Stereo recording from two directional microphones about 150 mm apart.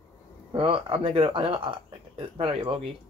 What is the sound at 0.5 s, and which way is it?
Speech, 35° right (ahead or behind).